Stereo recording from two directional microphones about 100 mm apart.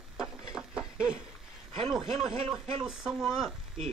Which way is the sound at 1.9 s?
Centre (ahead or behind).